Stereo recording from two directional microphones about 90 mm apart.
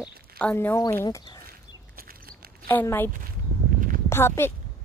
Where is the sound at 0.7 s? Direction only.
40° left (ahead or behind).